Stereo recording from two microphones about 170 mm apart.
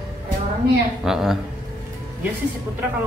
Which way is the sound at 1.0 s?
Centre (ahead or behind).